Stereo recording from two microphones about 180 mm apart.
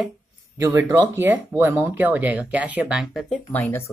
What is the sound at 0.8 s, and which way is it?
Speech, 15° right (ahead or behind).